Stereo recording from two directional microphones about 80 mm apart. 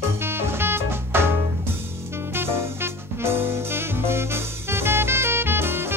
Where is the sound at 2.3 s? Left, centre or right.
Right.